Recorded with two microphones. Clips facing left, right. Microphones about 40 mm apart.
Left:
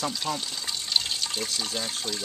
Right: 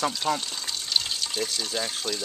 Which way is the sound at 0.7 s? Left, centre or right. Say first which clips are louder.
Even; centre.